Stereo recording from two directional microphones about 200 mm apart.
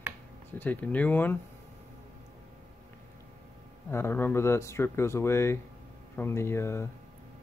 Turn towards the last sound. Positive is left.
turn(degrees=10)  # may be behind; listen again after turning